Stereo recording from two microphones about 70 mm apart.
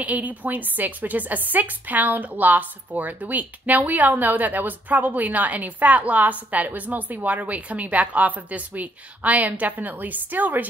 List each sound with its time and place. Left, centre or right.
0.0 s speech: right